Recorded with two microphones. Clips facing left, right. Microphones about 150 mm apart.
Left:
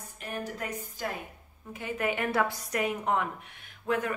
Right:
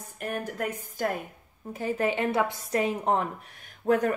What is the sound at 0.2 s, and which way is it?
Speech, 55° right (ahead or behind).